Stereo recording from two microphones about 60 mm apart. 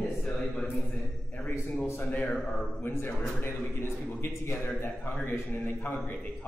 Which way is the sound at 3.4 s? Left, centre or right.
Left.